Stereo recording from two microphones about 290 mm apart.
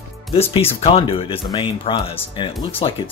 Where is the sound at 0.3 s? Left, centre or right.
Centre.